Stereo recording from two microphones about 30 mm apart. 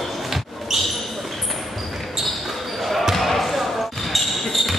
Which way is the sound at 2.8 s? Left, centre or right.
Centre.